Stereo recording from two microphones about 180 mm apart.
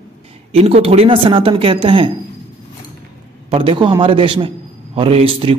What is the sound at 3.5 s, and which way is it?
A man's voice, 30° right (ahead or behind).